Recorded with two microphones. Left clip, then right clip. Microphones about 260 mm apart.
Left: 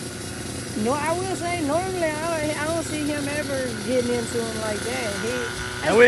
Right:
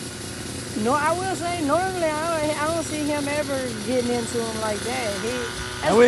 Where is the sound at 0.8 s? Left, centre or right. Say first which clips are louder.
Right 3 dB; right.